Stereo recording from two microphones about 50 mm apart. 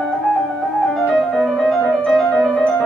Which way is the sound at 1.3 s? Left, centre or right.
Centre.